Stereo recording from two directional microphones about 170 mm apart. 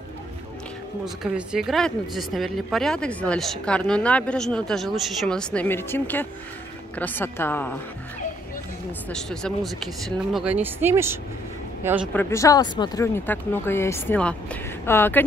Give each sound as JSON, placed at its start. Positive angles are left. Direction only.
{"t": 1.0, "sound": "speech", "side_deg": -5}
{"t": 9.1, "sound": "speech", "side_deg": 5}
{"t": 12.1, "sound": "speech", "side_deg": 10}